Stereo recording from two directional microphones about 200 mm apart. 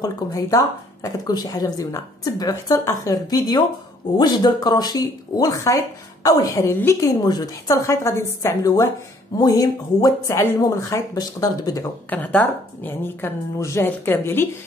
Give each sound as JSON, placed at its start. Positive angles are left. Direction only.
{"t": 0.0, "sound": "speech", "side_deg": 15}